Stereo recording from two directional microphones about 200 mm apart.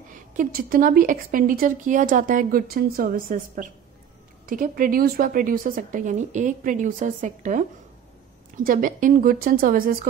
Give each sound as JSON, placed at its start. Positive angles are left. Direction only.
{"t": 0.1, "sound": "a woman's voice", "side_deg": -45}
{"t": 8.6, "sound": "a woman's voice", "side_deg": -45}